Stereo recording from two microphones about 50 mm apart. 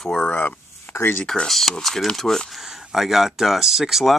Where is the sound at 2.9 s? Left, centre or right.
Centre.